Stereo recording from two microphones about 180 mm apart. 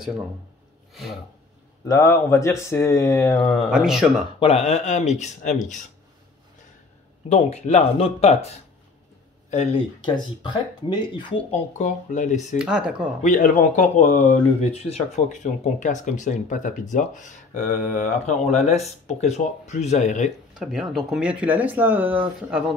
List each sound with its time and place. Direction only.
1.9 s speech: 15° left (ahead or behind)
3.4 s speech: centre (ahead or behind)
4.4 s speech: 35° left (ahead or behind)
7.2 s speech: 35° left (ahead or behind)
10.0 s speech: 25° left (ahead or behind)
11.8 s speech: 45° left (ahead or behind)
12.5 s speech: 5° right (ahead or behind)
13.2 s speech: 45° left (ahead or behind)
20.5 s speech: 5° right (ahead or behind)